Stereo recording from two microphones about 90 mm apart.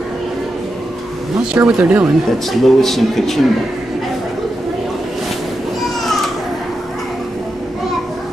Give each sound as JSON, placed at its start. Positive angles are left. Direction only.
{"t": 1.6, "sound": "speech", "side_deg": -15}
{"t": 2.2, "sound": "a man's voice", "side_deg": 0}